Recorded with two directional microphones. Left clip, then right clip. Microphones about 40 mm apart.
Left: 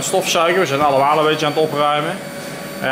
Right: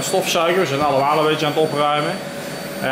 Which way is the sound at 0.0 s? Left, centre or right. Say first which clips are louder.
Left 2 dB; centre.